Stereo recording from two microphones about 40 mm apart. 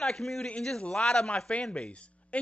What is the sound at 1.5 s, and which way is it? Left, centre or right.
Speech, left.